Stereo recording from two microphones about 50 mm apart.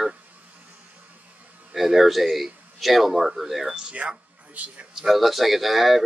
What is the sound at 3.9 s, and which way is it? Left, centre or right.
Speech, right.